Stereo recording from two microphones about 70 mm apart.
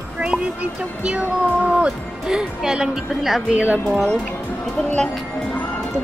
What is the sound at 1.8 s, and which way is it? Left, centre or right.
Speech, centre.